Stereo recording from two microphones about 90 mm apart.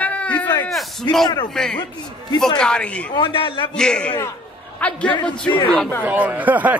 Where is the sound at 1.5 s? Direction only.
5° left (ahead or behind).